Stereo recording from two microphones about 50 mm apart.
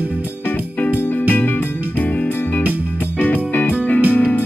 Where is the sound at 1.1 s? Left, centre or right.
Left.